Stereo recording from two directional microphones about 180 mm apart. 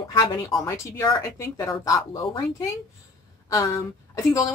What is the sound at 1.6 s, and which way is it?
Speech, 20° left (ahead or behind).